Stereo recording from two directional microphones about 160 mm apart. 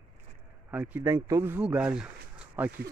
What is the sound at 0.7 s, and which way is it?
Speech, 10° right (ahead or behind).